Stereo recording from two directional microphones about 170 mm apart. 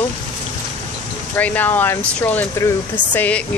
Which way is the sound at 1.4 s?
10° left (ahead or behind).